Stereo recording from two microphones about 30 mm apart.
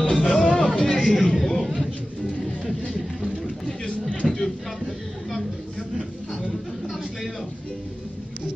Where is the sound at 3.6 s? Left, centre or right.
Left.